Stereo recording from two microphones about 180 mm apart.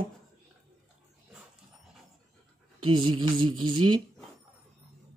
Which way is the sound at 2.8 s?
30° right (ahead or behind).